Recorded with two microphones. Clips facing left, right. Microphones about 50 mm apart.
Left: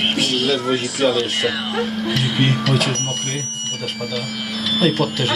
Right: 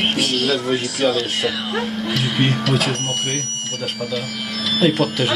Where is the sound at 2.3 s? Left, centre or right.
Centre.